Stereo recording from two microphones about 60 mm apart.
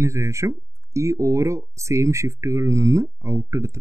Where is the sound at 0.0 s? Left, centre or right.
Right.